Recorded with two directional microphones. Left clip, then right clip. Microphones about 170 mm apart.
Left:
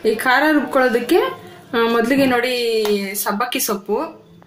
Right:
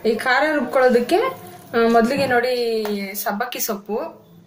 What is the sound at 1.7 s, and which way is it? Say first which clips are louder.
Speech: even; 45° left (ahead or behind).